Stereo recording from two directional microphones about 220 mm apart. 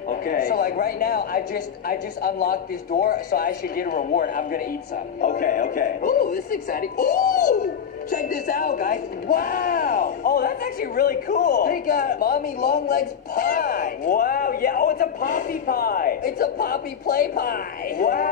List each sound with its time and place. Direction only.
0.1 s speech: 40° left (ahead or behind)